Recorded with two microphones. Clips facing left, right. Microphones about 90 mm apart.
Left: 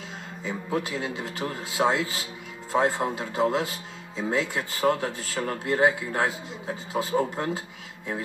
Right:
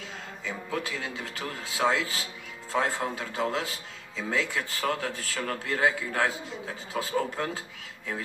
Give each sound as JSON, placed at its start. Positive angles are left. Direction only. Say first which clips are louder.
{"t": 0.4, "sound": "a man's voice", "louder": "left 4 dB", "side_deg": 30}